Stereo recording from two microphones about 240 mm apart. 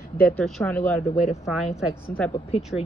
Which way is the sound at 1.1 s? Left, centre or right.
Left.